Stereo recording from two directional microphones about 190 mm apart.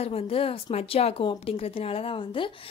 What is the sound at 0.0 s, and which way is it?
Speech, 30° left (ahead or behind).